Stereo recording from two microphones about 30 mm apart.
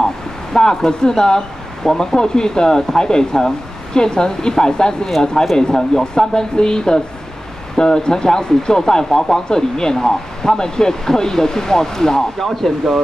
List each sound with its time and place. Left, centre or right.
0.5 s speech: left
12.4 s speech: centre